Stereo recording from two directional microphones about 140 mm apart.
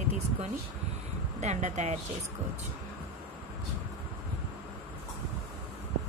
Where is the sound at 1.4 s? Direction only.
55° right (ahead or behind).